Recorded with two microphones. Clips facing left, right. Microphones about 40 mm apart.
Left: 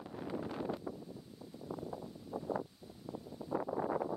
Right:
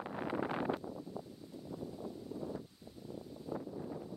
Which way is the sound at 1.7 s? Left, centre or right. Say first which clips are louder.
Left 1 dB; centre.